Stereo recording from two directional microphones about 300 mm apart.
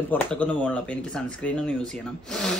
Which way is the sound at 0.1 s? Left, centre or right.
Centre.